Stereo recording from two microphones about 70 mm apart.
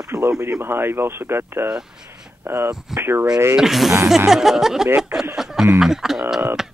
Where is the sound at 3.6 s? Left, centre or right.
Centre.